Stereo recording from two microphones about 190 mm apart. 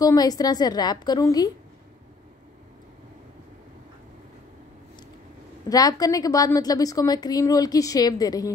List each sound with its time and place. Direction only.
0.0 s a woman's voice: 20° left (ahead or behind)
5.7 s a woman's voice: 20° left (ahead or behind)